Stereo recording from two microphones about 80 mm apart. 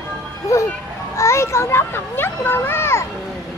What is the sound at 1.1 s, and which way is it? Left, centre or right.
A child's voice, left.